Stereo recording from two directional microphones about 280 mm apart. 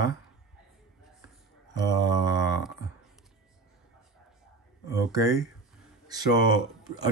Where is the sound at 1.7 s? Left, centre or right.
Centre.